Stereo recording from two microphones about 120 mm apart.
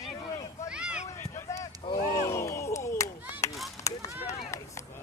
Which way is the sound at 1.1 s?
25° left (ahead or behind).